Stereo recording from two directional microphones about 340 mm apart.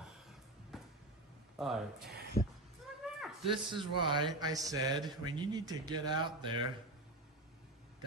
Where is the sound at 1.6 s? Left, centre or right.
Centre.